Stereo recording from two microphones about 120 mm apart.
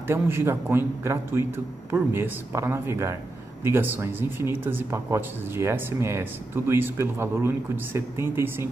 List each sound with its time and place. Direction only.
0.0 s speech: 20° right (ahead or behind)